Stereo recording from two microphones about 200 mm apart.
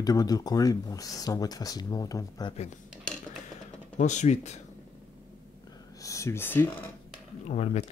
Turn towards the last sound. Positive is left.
turn(degrees=35)  # may be behind; listen again after turning